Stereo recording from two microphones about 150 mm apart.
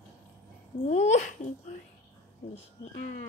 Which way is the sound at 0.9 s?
50° left (ahead or behind).